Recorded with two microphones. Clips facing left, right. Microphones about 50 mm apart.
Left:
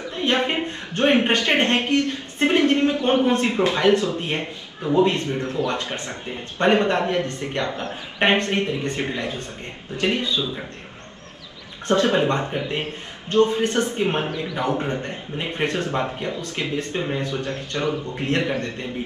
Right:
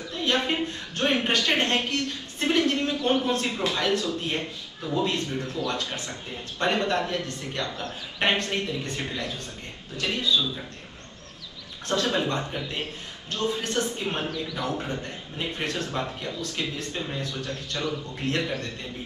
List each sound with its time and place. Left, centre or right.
0.1 s a man's voice: left
11.9 s a man's voice: left